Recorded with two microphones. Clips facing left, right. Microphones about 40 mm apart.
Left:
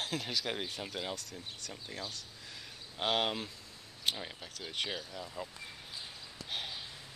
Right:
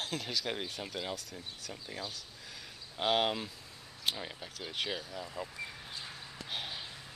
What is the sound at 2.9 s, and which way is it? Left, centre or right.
Speech, centre.